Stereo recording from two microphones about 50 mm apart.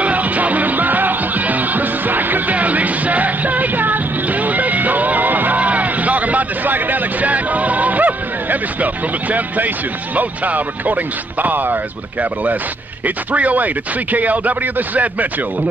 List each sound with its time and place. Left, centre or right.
0.0 s music: right
10.1 s speech: right